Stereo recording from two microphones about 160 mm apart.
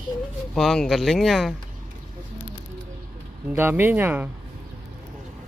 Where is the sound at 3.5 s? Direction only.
15° right (ahead or behind).